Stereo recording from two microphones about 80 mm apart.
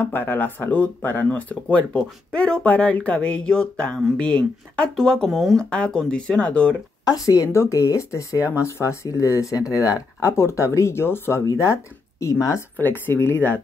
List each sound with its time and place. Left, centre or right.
0.0 s speech: left; by 5.6 s centre
5.6 s speech: centre
7.1 s a woman's voice: left
12.7 s speech: left